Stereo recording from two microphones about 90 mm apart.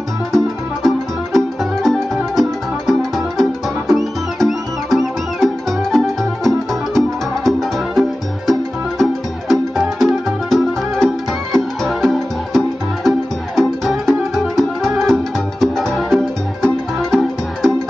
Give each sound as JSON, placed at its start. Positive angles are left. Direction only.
{"t": 0.8, "sound": "music", "side_deg": 5}